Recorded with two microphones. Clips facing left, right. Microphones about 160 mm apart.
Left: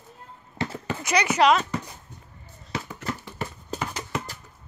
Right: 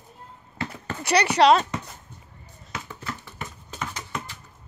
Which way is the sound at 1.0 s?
35° right (ahead or behind).